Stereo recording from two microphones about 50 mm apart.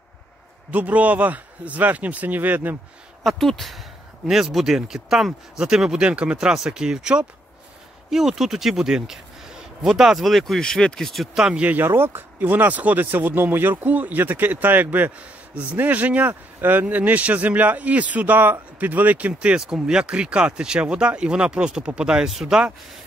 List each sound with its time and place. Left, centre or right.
0.7 s speech: right
3.3 s speech: centre
5.9 s speech: right
6.3 s speech: centre
10.6 s speech: centre
11.3 s speech: centre
11.8 s speech: right
19.6 s speech: centre